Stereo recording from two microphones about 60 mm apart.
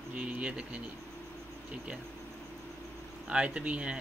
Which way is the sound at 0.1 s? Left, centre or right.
Right.